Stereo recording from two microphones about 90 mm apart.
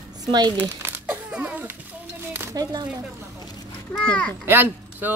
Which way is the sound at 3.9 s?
10° left (ahead or behind).